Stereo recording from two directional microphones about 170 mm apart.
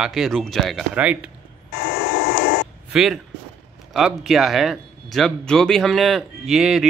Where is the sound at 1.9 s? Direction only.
75° left (ahead or behind).